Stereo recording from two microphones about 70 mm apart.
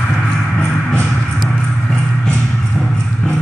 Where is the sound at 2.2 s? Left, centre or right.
Centre.